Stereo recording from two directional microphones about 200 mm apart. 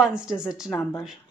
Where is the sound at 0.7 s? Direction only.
10° left (ahead or behind).